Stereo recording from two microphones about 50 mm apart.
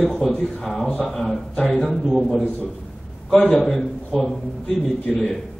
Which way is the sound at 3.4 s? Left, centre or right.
Centre.